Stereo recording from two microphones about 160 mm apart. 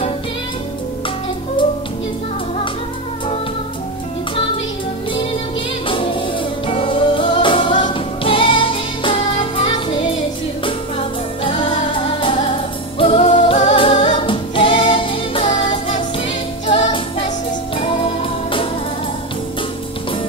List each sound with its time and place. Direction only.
6.7 s music: 35° left (ahead or behind)
13.9 s music: 45° left (ahead or behind)
14.2 s music: 30° left (ahead or behind)